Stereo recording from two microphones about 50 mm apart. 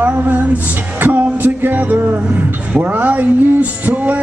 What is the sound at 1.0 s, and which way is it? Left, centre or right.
Music, right.